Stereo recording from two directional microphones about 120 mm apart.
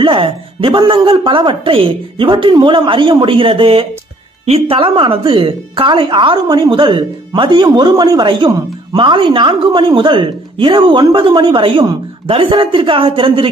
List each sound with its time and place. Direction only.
0.0 s a woman's voice: 45° right (ahead or behind)
2.2 s a woman's voice: 35° right (ahead or behind)